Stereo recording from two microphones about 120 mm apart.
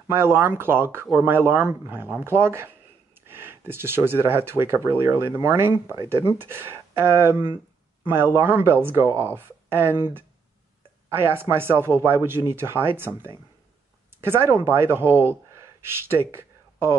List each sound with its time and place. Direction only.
0.1 s speech: 20° right (ahead or behind)